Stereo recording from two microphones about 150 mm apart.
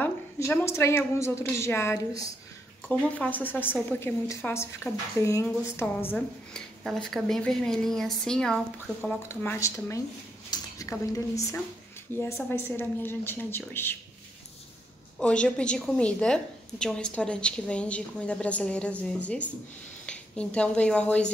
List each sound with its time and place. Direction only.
0.0 s a woman's voice: 15° left (ahead or behind)
9.3 s a woman's voice: 15° left (ahead or behind)
15.1 s a woman's voice: 5° left (ahead or behind)